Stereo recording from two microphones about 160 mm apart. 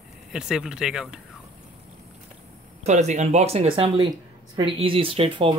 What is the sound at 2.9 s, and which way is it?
Speech, 45° right (ahead or behind).